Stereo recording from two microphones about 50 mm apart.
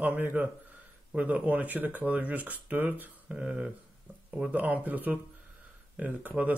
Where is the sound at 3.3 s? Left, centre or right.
Right.